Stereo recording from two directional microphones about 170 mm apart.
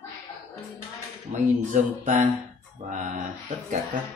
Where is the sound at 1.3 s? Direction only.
50° right (ahead or behind).